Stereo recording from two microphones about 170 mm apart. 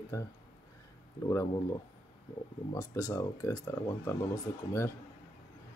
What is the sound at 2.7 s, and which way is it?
Speech, 20° left (ahead or behind).